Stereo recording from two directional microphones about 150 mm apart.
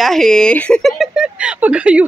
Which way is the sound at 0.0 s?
Centre (ahead or behind).